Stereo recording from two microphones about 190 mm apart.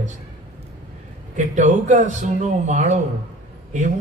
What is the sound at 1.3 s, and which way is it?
A man's voice, 40° right (ahead or behind).